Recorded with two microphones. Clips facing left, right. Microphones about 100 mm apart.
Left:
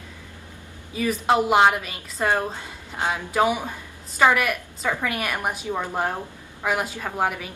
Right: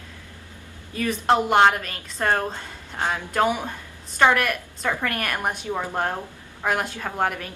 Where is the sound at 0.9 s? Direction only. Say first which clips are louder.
Even; 5° left (ahead or behind).